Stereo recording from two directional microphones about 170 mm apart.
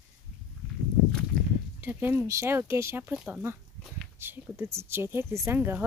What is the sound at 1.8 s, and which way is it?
Speech, 10° right (ahead or behind).